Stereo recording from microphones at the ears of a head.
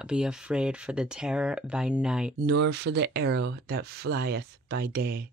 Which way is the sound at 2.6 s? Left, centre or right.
Right.